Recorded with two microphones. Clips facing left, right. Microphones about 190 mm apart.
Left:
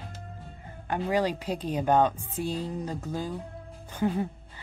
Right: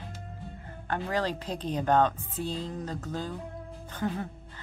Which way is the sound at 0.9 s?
10° left (ahead or behind).